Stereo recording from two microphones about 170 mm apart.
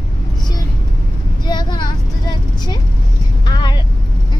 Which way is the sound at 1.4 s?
25° left (ahead or behind).